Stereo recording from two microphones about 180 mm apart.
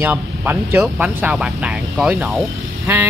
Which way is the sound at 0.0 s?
10° right (ahead or behind).